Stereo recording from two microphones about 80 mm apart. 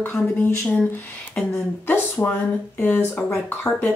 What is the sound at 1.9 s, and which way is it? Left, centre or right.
Speech, left.